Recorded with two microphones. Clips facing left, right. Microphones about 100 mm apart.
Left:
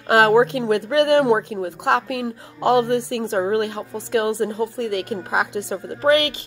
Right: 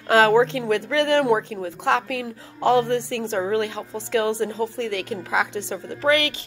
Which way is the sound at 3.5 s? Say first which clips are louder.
Left 2 dB; 55° left (ahead or behind).